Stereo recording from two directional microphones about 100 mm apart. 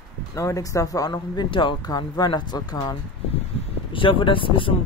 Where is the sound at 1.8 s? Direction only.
40° left (ahead or behind).